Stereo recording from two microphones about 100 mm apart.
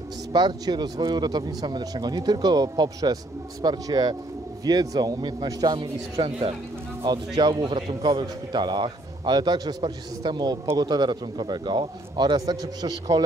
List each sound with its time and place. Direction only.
0.3 s a man's voice: 45° right (ahead or behind)